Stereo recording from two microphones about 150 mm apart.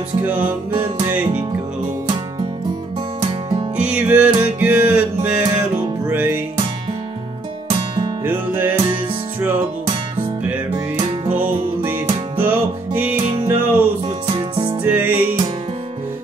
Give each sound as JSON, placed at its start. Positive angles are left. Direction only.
{"t": 0.2, "sound": "music", "side_deg": -10}
{"t": 3.2, "sound": "music", "side_deg": -30}
{"t": 3.7, "sound": "music", "side_deg": -10}
{"t": 8.3, "sound": "music", "side_deg": -15}
{"t": 11.2, "sound": "music", "side_deg": -10}
{"t": 14.0, "sound": "music", "side_deg": -35}
{"t": 14.8, "sound": "music", "side_deg": -10}